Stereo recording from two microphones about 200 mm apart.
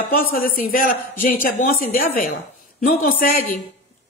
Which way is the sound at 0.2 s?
45° left (ahead or behind).